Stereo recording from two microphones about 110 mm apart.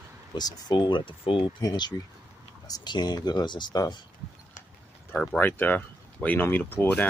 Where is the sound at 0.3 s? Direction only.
40° left (ahead or behind).